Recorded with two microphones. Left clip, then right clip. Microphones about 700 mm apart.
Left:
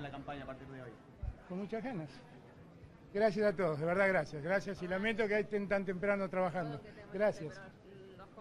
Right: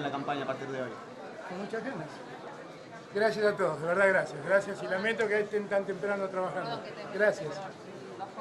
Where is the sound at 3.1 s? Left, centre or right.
Left.